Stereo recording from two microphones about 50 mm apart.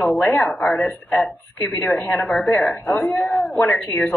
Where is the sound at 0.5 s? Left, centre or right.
Left.